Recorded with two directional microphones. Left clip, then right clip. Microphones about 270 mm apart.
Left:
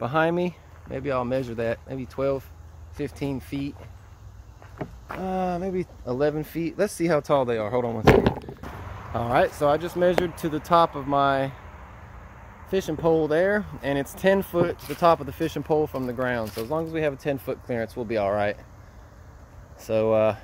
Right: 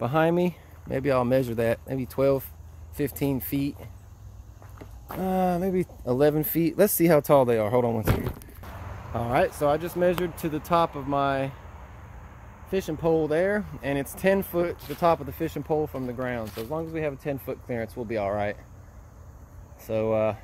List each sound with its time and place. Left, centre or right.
0.0 s speech: centre
5.2 s speech: right
9.1 s speech: centre
12.6 s speech: centre
19.8 s speech: centre